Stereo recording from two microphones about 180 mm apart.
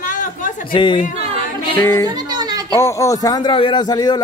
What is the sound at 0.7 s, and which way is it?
Speech, 25° left (ahead or behind).